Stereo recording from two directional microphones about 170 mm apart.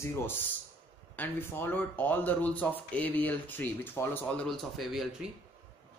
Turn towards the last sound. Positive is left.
turn(degrees=0)  # may be behind; listen again after turning